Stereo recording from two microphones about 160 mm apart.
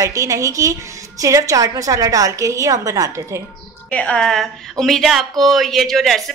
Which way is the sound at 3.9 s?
10° left (ahead or behind).